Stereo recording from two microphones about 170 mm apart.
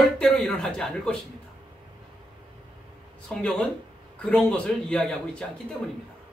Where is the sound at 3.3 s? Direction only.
5° left (ahead or behind).